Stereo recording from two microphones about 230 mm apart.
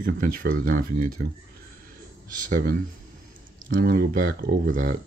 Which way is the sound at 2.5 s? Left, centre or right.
Right.